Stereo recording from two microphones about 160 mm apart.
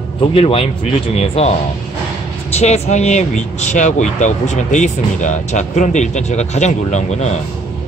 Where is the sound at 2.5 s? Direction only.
40° left (ahead or behind).